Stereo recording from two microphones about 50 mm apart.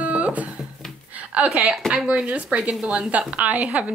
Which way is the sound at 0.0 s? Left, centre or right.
Right.